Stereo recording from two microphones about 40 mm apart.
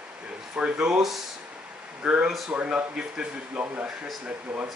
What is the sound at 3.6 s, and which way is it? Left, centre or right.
Speech, right.